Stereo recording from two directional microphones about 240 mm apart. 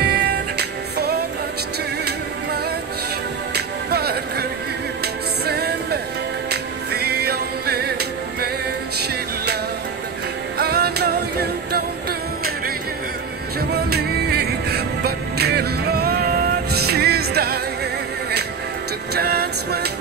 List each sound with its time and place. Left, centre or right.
0.0 s music: right
3.5 s music: right
10.6 s music: right
13.6 s music: right
19.1 s music: right